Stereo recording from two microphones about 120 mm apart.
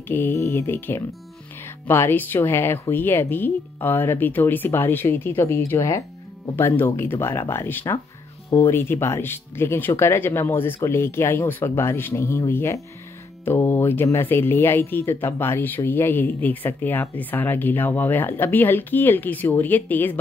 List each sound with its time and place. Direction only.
0.1 s speech: 20° left (ahead or behind)